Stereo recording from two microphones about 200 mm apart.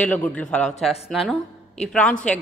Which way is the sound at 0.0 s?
5° left (ahead or behind).